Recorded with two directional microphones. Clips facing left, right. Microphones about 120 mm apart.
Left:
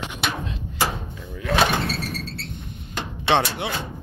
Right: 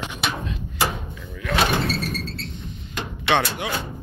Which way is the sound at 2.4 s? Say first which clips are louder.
Right 1 dB; 55° left (ahead or behind).